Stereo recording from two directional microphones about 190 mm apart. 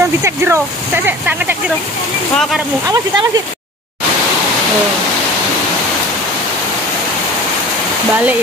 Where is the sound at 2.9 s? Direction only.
20° right (ahead or behind).